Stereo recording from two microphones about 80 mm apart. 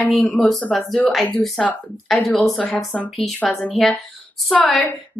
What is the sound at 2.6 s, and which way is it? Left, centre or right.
Speech, centre.